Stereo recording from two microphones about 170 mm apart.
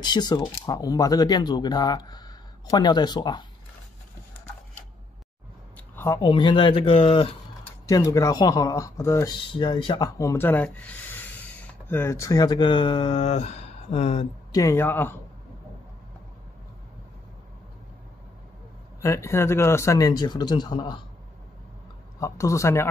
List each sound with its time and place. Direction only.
0.0 s speech: 25° left (ahead or behind)
5.9 s a sound: 15° left (ahead or behind)
6.2 s speech: 30° left (ahead or behind)
7.8 s speech: 20° left (ahead or behind); by 14.2 s 40° left (ahead or behind)
14.5 s speech: 20° left (ahead or behind)
18.9 s speech: 15° left (ahead or behind)
22.2 s speech: 15° left (ahead or behind)